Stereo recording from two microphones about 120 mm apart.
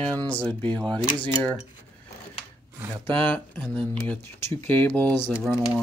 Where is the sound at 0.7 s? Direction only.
40° right (ahead or behind).